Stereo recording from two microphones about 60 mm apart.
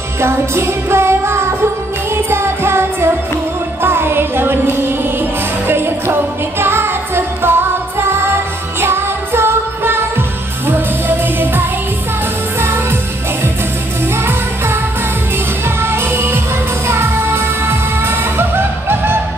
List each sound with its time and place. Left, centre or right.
0.2 s music: right
12.5 s jingle bell: right
15.8 s music: right